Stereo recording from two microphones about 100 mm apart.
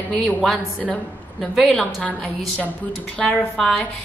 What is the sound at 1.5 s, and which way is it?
Speech, centre (ahead or behind).